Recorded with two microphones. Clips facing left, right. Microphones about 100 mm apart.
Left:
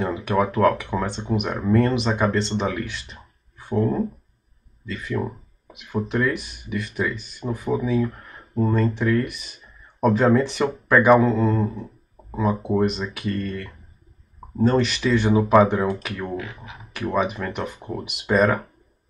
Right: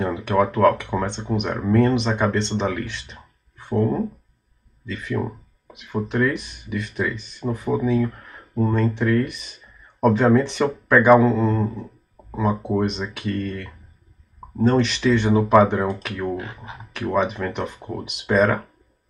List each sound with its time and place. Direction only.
0.0 s speech: centre (ahead or behind)
16.3 s speech: 35° right (ahead or behind)
16.9 s speech: centre (ahead or behind)